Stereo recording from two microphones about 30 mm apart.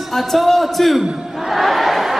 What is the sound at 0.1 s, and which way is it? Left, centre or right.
Speech, centre.